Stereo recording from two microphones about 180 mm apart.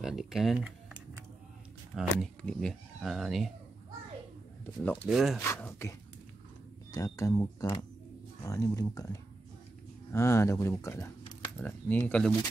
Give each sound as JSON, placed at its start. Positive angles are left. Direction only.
{"t": 0.0, "sound": "speech", "side_deg": 0}
{"t": 2.0, "sound": "speech", "side_deg": 5}
{"t": 5.0, "sound": "speech", "side_deg": 0}
{"t": 5.4, "sound": "speech", "side_deg": 15}
{"t": 6.9, "sound": "speech", "side_deg": 20}